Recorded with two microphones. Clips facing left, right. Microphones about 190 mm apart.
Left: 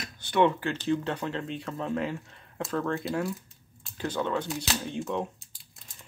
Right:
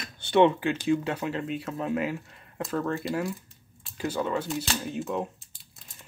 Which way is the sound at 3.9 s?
5° right (ahead or behind).